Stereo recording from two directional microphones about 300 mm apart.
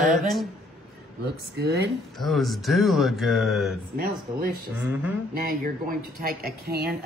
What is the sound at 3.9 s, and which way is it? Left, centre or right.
Speech, right.